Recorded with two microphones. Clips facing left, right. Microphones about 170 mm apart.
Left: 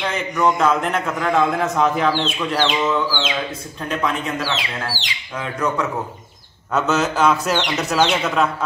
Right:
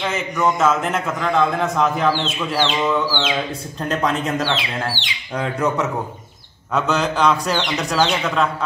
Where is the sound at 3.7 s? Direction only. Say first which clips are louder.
Right 2 dB; 35° right (ahead or behind).